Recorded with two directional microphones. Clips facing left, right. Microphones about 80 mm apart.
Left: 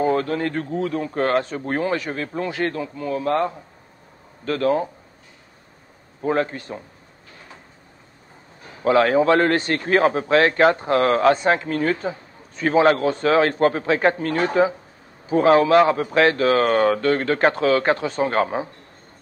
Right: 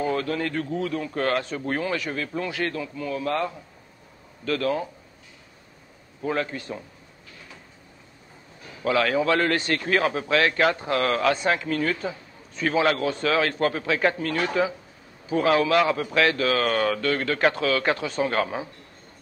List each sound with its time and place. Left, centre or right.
0.0 s a man's voice: left
6.2 s a man's voice: left
8.6 s a man's voice: left